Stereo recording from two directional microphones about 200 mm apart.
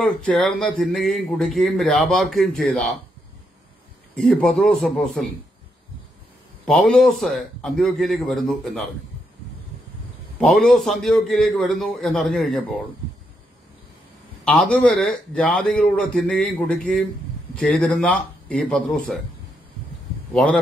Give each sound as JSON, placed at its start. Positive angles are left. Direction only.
{"t": 0.0, "sound": "speech", "side_deg": 5}
{"t": 4.1, "sound": "speech", "side_deg": 5}
{"t": 6.6, "sound": "speech", "side_deg": 5}
{"t": 10.4, "sound": "speech", "side_deg": 0}
{"t": 14.4, "sound": "speech", "side_deg": 5}